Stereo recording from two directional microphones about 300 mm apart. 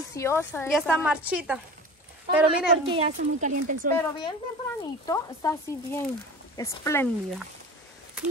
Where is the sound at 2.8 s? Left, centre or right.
Centre.